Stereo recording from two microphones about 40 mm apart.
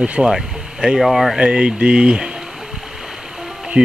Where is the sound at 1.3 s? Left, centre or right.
Right.